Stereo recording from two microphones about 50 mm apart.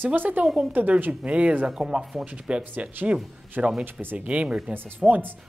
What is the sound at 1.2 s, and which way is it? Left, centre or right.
Speech, right.